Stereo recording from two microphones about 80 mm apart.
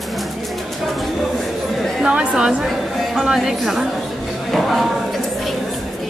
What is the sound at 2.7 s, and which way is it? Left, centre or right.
Speech, centre.